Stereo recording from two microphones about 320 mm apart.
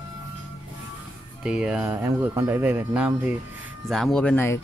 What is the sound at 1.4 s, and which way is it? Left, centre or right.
Speech, centre.